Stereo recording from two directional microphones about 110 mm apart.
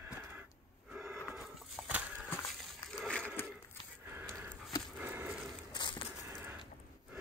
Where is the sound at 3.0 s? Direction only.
10° left (ahead or behind).